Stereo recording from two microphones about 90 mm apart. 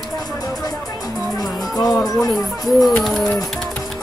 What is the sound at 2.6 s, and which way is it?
Bird, centre (ahead or behind).